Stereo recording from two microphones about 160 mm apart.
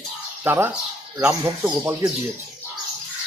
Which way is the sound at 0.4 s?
15° right (ahead or behind).